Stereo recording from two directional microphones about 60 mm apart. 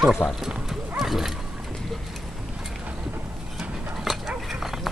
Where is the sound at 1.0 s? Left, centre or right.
Centre.